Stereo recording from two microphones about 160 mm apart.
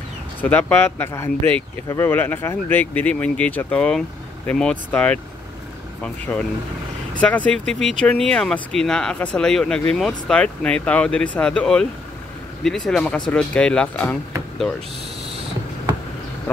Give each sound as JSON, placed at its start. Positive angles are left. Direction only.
{"t": 0.4, "sound": "speech", "side_deg": 10}